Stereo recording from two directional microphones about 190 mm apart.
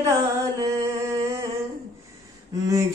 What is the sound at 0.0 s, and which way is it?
Music, 15° right (ahead or behind).